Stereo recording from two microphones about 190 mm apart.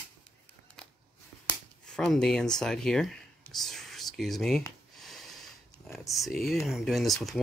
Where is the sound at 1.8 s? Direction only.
5° left (ahead or behind).